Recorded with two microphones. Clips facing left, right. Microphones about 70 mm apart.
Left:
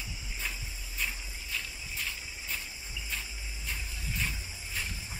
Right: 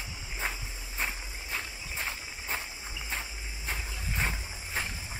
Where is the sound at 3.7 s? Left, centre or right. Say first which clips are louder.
Right 3 dB; right.